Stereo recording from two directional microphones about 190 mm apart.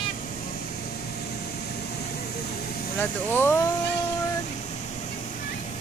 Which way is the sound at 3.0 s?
10° left (ahead or behind).